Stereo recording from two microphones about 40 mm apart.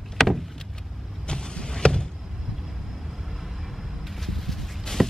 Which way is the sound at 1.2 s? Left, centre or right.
Left.